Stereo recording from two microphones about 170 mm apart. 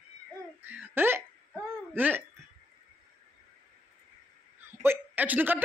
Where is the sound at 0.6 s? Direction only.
10° right (ahead or behind).